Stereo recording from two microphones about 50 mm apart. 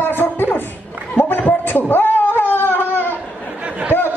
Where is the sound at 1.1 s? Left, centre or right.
Left.